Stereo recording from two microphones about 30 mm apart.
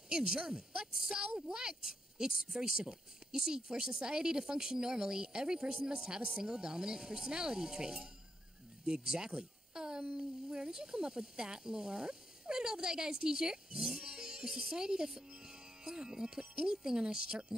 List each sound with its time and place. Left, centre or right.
0.1 s speech: right
9.4 s a sound: right
10.1 s speech: right
14.0 s music: right
14.7 s speech: right